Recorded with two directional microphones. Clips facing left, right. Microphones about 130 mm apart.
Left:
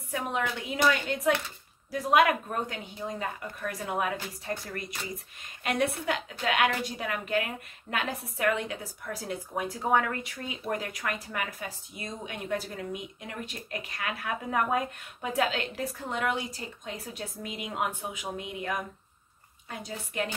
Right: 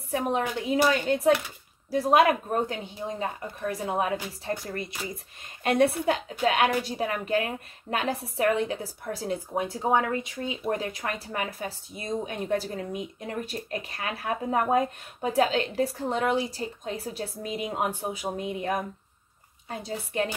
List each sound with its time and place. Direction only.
0.1 s speech: 35° right (ahead or behind)